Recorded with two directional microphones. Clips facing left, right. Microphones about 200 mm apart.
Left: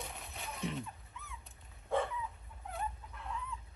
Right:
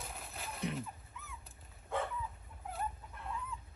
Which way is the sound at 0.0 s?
Centre (ahead or behind).